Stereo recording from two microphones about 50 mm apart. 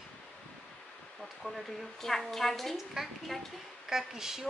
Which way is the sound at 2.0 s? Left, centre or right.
Centre.